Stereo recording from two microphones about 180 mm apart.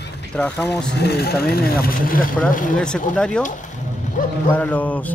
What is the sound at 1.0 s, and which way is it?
Speech, 65° left (ahead or behind).